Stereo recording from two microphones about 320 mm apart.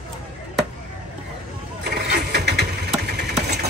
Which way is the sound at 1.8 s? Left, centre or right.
Right.